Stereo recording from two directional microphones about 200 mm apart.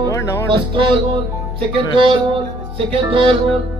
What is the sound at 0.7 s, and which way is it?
Speech, 25° right (ahead or behind).